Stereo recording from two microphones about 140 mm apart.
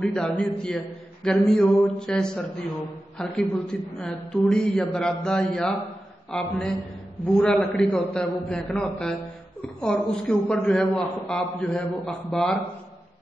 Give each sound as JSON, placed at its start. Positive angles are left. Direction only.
{"t": 0.0, "sound": "a man's voice", "side_deg": 5}